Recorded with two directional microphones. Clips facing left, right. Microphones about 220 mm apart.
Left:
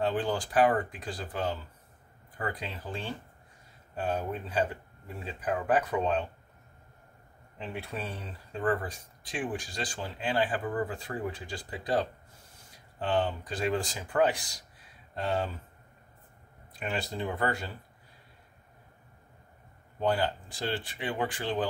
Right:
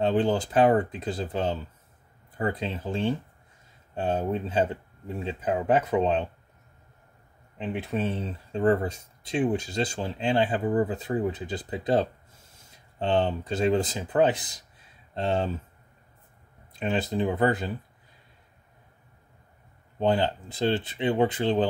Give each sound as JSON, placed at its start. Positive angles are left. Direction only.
{"t": 0.0, "sound": "speech", "side_deg": -20}
{"t": 7.5, "sound": "speech", "side_deg": -20}
{"t": 16.8, "sound": "speech", "side_deg": -20}
{"t": 20.0, "sound": "speech", "side_deg": -25}